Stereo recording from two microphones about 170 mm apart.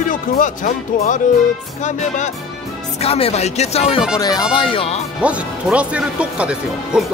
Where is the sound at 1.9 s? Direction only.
45° left (ahead or behind).